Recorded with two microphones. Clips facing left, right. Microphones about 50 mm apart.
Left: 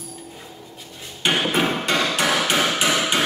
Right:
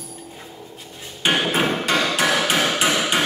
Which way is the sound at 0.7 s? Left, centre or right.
Centre.